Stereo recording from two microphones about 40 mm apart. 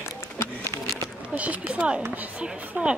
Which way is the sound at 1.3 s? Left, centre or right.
Right.